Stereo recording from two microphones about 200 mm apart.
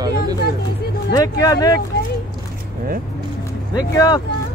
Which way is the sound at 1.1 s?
20° left (ahead or behind).